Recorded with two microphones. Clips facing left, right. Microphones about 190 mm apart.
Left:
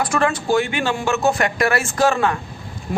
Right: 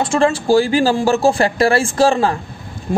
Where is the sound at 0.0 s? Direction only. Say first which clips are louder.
Right 4 dB; 30° right (ahead or behind).